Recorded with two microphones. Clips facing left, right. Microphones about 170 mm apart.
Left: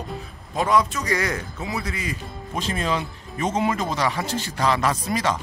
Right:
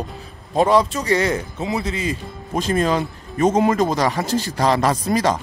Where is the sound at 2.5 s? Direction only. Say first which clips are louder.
Right 6 dB; 45° right (ahead or behind).